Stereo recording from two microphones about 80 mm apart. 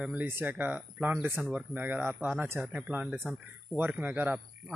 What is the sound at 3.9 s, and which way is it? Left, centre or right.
Speech, right.